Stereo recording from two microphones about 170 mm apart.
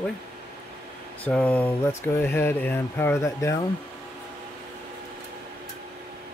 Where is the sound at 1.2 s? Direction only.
5° left (ahead or behind).